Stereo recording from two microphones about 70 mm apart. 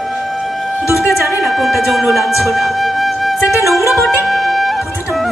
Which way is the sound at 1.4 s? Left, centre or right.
Centre.